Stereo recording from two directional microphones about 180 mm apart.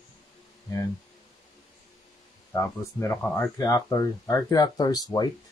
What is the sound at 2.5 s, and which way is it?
Speech, 15° left (ahead or behind).